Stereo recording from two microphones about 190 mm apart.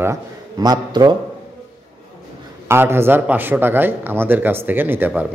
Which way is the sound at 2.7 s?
10° right (ahead or behind).